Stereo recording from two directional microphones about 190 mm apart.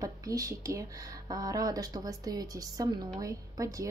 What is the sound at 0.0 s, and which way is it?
A woman's voice, 20° right (ahead or behind).